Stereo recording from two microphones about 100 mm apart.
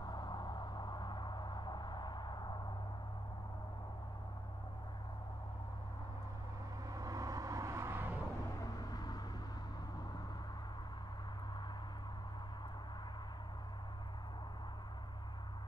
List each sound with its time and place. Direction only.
0.0 s a sound: 45° left (ahead or behind)
6.9 s vehicle: 35° right (ahead or behind)
8.6 s vehicle: 40° left (ahead or behind)